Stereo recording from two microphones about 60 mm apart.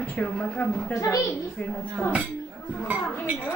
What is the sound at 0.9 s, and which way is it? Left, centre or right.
Speech, left.